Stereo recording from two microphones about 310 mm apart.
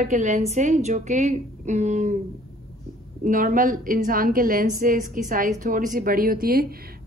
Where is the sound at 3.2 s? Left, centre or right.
Right.